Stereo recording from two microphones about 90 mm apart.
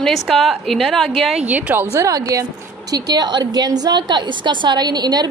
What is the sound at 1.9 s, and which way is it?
A woman's voice, 40° right (ahead or behind).